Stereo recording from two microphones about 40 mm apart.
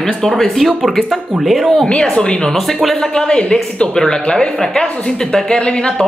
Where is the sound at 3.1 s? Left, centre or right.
Centre.